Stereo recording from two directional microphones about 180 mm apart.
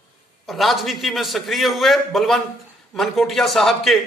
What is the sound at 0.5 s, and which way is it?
A man's voice, centre (ahead or behind).